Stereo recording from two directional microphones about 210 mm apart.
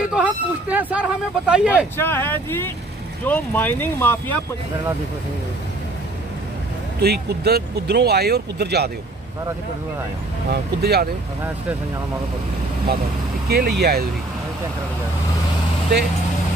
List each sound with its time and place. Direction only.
0.1 s speech: 5° right (ahead or behind)
2.0 s speech: 10° left (ahead or behind)
7.0 s speech: 50° right (ahead or behind)
10.5 s speech: 50° right (ahead or behind)
13.5 s speech: 50° right (ahead or behind)